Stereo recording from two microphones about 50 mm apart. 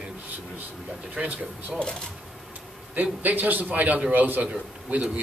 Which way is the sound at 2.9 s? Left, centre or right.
Right.